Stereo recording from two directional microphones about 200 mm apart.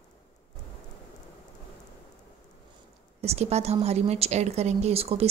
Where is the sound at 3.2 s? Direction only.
30° right (ahead or behind).